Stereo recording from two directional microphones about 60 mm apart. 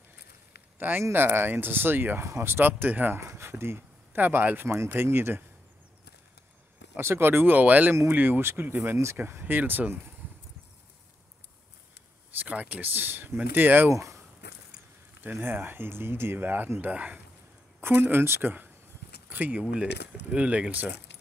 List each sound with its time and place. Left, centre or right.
0.7 s speech: right
3.2 s speech: right
4.6 s speech: right
7.0 s speech: right
8.4 s speech: right
8.8 s speech: right
12.4 s speech: right
13.8 s speech: right
15.2 s speech: right
19.7 s speech: centre